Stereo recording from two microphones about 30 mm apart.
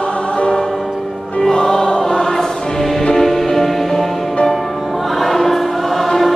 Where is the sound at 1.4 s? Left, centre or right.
Centre.